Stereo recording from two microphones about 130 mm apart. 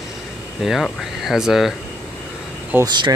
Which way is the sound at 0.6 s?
Centre (ahead or behind).